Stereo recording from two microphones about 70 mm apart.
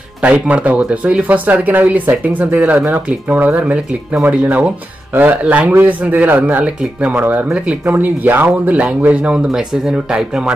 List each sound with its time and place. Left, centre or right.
0.2 s speech: centre